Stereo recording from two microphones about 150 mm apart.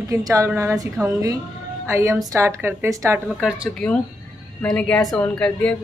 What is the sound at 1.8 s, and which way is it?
Speech, 15° right (ahead or behind).